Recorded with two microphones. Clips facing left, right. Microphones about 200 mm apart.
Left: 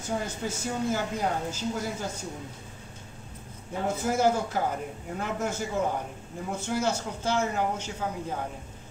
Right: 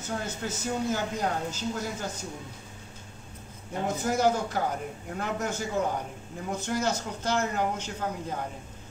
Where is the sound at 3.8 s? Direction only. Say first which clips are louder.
Even; 10° left (ahead or behind).